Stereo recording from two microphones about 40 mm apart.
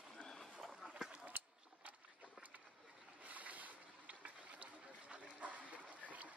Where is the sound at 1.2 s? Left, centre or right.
Right.